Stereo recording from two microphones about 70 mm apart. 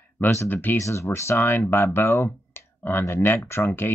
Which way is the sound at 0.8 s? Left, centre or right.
Left.